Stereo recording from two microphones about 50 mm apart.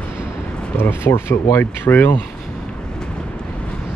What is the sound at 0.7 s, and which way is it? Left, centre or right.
Speech, left.